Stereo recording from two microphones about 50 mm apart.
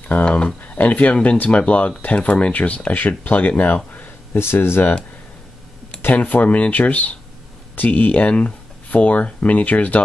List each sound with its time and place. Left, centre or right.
0.2 s a sound: left
0.6 s speech: left
4.4 s speech: left
6.1 s speech: left